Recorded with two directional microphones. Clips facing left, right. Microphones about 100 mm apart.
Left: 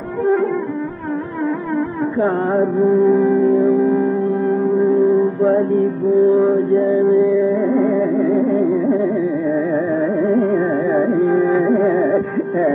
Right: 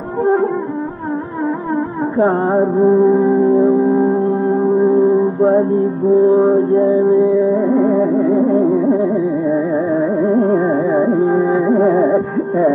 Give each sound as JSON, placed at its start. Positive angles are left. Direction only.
{"t": 0.2, "sound": "music", "side_deg": -30}
{"t": 2.1, "sound": "music", "side_deg": -30}